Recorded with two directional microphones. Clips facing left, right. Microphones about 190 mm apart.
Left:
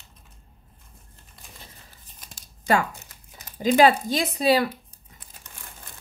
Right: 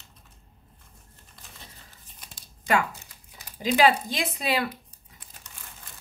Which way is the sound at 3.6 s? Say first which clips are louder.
Left 4 dB; 45° left (ahead or behind).